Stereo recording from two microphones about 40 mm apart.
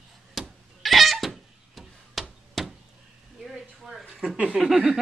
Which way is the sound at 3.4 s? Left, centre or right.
Centre.